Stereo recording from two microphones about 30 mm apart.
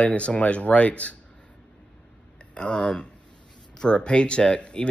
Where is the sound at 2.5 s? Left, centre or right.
Left.